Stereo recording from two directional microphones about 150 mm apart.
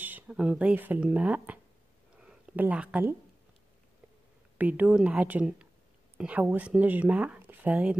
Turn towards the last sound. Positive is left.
turn(degrees=-10)  # may be behind; listen again after turning